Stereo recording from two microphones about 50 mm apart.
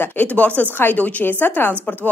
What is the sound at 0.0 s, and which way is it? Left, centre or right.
A woman's voice, left.